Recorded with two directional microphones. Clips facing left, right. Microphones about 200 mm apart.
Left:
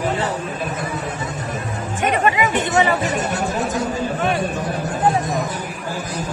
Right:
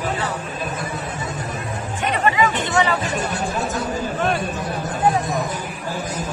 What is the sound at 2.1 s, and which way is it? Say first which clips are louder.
Music: left 1 dB; 20° left (ahead or behind).